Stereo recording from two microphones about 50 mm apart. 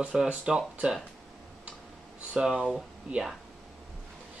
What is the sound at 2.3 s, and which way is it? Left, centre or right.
Speech, centre.